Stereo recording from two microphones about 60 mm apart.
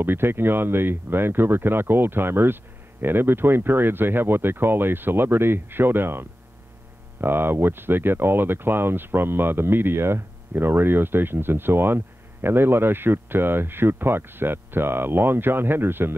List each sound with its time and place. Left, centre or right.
0.0 s speech: right